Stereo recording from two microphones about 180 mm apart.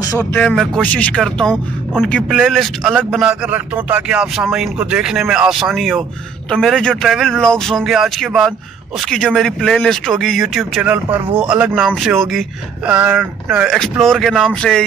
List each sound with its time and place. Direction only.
0.0 s speech: 20° left (ahead or behind)
0.4 s speech: 5° left (ahead or behind)